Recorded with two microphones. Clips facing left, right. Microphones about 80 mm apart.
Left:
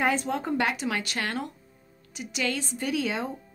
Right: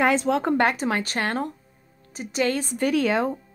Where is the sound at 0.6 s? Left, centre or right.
Right.